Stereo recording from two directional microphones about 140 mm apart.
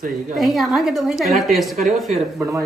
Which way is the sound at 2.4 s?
20° right (ahead or behind).